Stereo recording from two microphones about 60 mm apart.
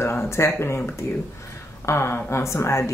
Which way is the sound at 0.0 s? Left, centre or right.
Left.